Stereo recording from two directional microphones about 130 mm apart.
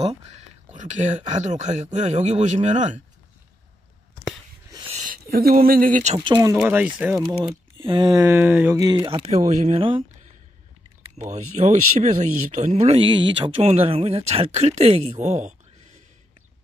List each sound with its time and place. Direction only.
0.0 s speech: 60° right (ahead or behind)
4.8 s a sound: 80° right
5.7 s speech: 90° right
6.5 s speech: 10° right (ahead or behind)
7.4 s speech: 40° right (ahead or behind)
8.2 s speech: 15° right (ahead or behind)
8.7 s speech: 30° right (ahead or behind)
9.3 s speech: 60° right (ahead or behind)
9.8 s speech: 45° right (ahead or behind)
11.1 s speech: 65° right (ahead or behind)
12.9 s speech: 40° right (ahead or behind)
13.6 s speech: 50° right (ahead or behind)